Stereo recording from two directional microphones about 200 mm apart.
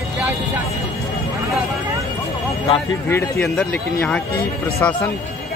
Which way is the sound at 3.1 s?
5° left (ahead or behind).